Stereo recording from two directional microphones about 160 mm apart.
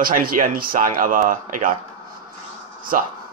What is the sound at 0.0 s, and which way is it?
Speech, 65° right (ahead or behind).